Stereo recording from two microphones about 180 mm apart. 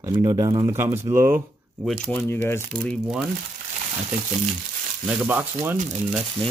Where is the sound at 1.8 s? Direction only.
10° left (ahead or behind).